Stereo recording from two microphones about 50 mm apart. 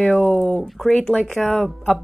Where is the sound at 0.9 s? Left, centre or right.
Left.